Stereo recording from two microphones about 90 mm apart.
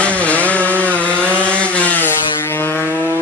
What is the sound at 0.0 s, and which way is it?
Chainsaw, 15° left (ahead or behind).